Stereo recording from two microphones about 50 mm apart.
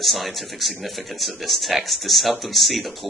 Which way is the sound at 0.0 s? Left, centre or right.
Centre.